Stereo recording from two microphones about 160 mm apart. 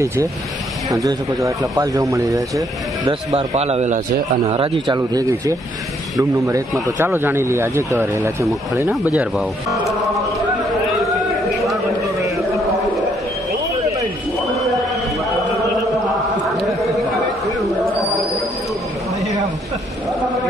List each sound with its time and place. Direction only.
0.0 s speech: 20° right (ahead or behind)
3.3 s a man's voice: 40° right (ahead or behind)
4.5 s speech: 35° right (ahead or behind); by 9.1 s 15° right (ahead or behind)
9.1 s speech: 5° right (ahead or behind)